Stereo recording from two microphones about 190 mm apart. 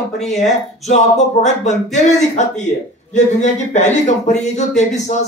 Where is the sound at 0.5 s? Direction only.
35° left (ahead or behind).